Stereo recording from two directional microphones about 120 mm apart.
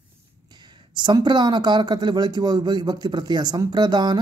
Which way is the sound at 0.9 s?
35° right (ahead or behind).